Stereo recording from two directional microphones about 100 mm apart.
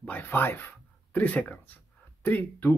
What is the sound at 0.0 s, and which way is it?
Speech, 20° left (ahead or behind).